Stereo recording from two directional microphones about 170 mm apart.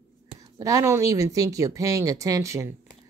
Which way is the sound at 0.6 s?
20° right (ahead or behind).